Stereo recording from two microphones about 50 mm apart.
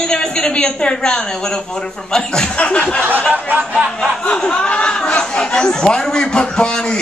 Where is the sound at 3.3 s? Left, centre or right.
Right.